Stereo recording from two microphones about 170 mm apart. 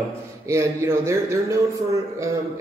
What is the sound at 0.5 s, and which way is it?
A man's voice, 15° right (ahead or behind).